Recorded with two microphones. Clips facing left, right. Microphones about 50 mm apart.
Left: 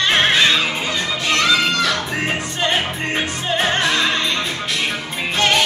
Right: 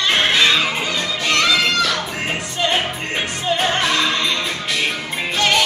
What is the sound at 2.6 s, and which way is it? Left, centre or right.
Music, centre.